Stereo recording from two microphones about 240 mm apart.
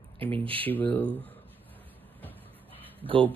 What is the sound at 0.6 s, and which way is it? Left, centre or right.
Speech, centre.